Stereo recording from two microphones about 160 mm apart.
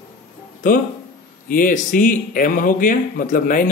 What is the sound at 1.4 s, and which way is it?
Speech, 60° left (ahead or behind).